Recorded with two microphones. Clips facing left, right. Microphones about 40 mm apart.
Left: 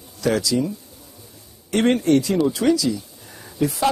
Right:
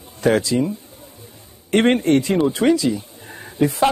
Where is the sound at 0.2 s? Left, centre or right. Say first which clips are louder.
Right 3 dB; right.